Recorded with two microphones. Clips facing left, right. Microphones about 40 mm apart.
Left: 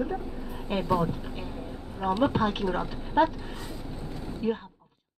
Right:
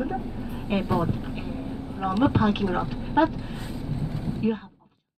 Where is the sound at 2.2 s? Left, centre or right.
Right.